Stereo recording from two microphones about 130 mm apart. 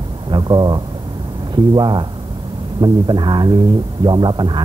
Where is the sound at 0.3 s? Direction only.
35° right (ahead or behind).